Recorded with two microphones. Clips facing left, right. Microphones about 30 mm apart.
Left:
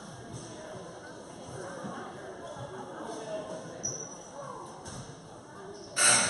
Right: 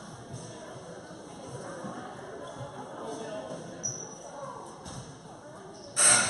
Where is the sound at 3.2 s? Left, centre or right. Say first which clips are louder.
Even; centre.